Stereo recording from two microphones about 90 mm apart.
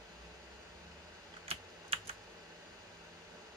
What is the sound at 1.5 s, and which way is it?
Typing, 90° right.